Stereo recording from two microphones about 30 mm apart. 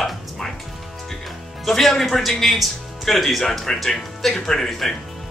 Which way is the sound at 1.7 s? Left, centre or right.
Centre.